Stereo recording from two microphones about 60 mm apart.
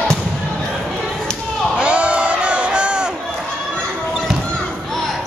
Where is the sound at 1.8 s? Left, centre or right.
Right.